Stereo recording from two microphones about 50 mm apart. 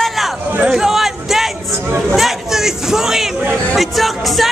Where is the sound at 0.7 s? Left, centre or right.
Centre.